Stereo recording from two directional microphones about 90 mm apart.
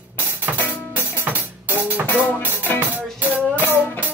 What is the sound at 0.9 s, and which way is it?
Music, 20° right (ahead or behind).